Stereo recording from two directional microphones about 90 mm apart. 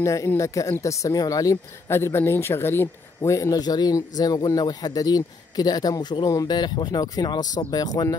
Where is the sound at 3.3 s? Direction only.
45° left (ahead or behind).